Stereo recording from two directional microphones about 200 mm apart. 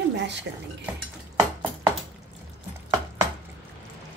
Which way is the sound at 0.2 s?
60° right (ahead or behind).